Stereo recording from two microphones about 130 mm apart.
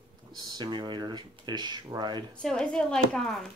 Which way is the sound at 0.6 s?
35° right (ahead or behind).